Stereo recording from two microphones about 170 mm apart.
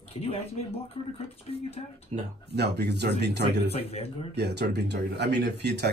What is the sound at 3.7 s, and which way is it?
Speech, 35° left (ahead or behind).